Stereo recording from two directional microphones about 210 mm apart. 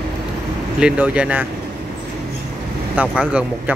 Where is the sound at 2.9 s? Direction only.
5° right (ahead or behind).